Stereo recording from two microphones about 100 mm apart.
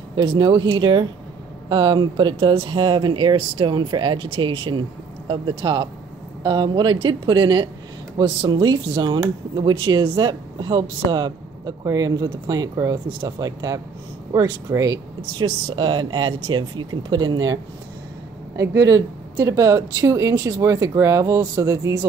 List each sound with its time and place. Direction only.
0.1 s speech: 45° right (ahead or behind)
15.7 s speech: 50° right (ahead or behind)
18.6 s speech: 30° right (ahead or behind)